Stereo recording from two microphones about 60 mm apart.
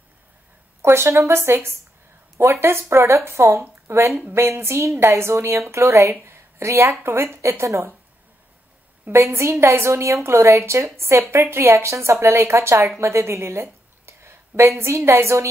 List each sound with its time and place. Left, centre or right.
0.8 s a woman's voice: right
6.2 s a sound: right
6.9 s a woman's voice: right
9.1 s a woman's voice: right